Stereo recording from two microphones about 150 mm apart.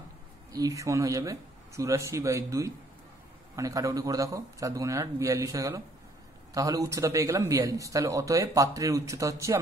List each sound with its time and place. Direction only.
0.5 s a man's voice: 25° right (ahead or behind)